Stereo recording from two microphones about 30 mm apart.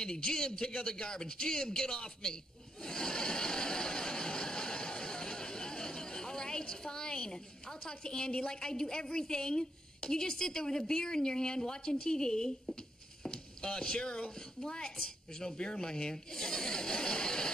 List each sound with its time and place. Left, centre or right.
0.0 s speech: left
2.8 s a sound: left
10.9 s speech: left